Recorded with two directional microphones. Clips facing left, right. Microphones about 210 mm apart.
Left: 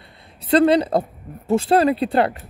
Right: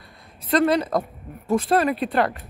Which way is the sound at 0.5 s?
30° left (ahead or behind).